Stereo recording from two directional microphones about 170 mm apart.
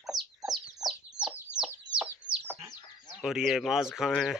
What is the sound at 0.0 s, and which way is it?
Chicken, centre (ahead or behind).